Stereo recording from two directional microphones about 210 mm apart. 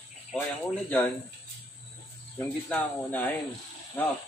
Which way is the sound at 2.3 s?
10° left (ahead or behind).